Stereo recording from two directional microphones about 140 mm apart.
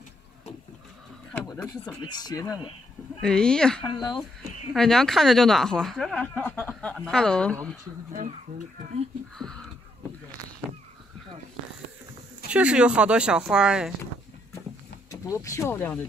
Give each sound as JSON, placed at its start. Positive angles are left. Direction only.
{"t": 2.0, "sound": "speech", "side_deg": 30}
{"t": 3.2, "sound": "speech", "side_deg": 5}
{"t": 3.9, "sound": "speech", "side_deg": 35}
{"t": 4.7, "sound": "speech", "side_deg": 5}
{"t": 12.4, "sound": "speech", "side_deg": -10}
{"t": 15.0, "sound": "speech", "side_deg": 25}